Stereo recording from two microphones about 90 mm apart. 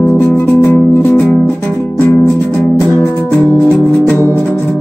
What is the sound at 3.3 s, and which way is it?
Music, 20° left (ahead or behind).